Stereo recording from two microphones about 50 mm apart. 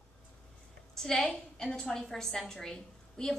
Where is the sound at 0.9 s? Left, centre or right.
Centre.